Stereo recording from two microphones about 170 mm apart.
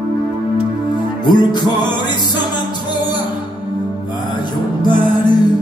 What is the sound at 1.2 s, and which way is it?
Music, 25° left (ahead or behind).